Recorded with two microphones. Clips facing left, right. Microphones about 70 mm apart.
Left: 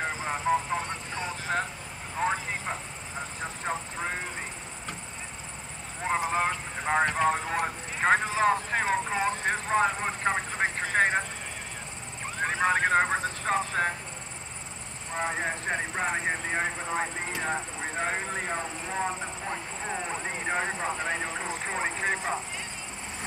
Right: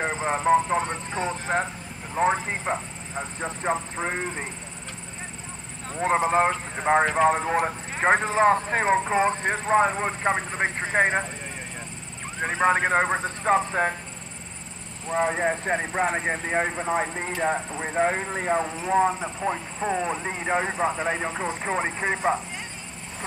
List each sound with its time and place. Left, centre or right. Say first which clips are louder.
0.0 s speech: right 5 dB; right
5.9 s speech: right 6 dB; right
12.4 s speech: right 4 dB; centre
15.1 s speech: right 7 dB; centre